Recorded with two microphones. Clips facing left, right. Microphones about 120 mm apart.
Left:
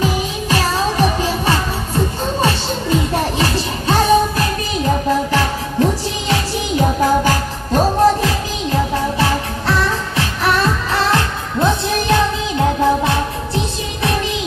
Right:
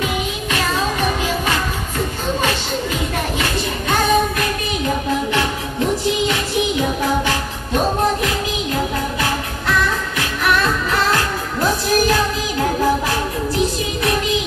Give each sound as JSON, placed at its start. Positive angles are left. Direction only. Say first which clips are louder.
{"t": 0.0, "sound": "music", "louder": "left 3 dB", "side_deg": 35}